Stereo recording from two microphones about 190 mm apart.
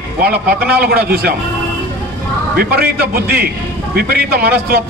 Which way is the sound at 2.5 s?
55° right (ahead or behind).